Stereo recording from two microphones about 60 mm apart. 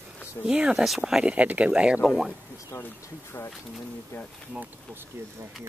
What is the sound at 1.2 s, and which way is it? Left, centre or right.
Speech, right.